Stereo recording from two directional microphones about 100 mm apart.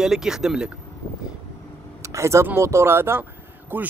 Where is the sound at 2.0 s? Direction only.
30° right (ahead or behind).